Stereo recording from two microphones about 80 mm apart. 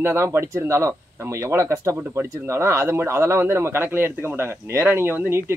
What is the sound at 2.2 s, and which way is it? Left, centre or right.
Speech, right.